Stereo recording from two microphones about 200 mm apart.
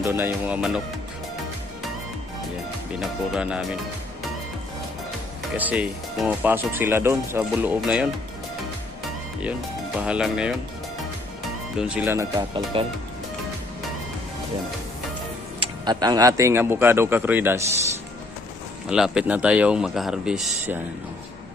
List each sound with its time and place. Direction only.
0.0 s speech: 10° right (ahead or behind)
3.0 s speech: 5° right (ahead or behind)
5.6 s speech: 5° right (ahead or behind)
9.4 s speech: 5° right (ahead or behind)
11.8 s speech: 5° right (ahead or behind)
12.4 s speech: 20° right (ahead or behind)
15.6 s speech: 20° right (ahead or behind)
18.9 s speech: 5° right (ahead or behind)